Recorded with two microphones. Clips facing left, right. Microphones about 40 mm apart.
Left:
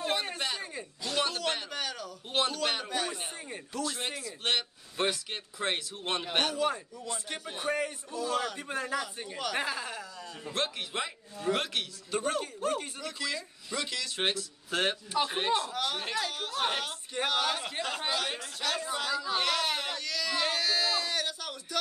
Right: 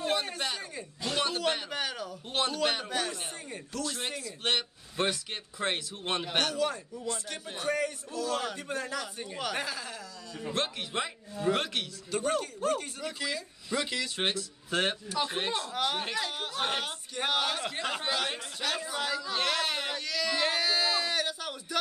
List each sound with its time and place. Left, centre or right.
0.0 s a sound: centre
1.1 s a sound: centre
2.3 s a man's voice: centre
6.3 s a man's voice: centre
9.6 s speech: left
10.5 s a man's voice: centre
12.1 s a man's voice: centre
13.0 s speech: centre
14.1 s a man's voice: centre
15.7 s a man's voice: centre